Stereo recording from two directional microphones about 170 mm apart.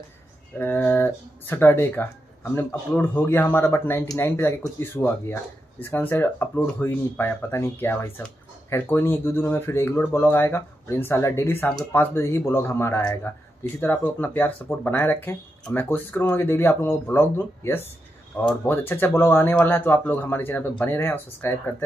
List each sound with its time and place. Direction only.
0.6 s speech: 10° left (ahead or behind)